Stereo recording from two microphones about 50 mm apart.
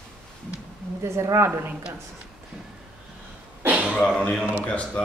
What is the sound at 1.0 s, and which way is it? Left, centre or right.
Speech, right.